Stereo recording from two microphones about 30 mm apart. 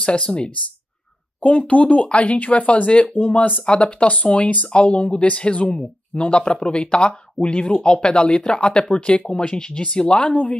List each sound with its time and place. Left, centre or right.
0.2 s speech: left
1.4 s speech: left
2.3 s speech: left
2.9 s speech: left
3.2 s speech: left
3.6 s speech: left
4.6 s speech: left
10.1 s speech: left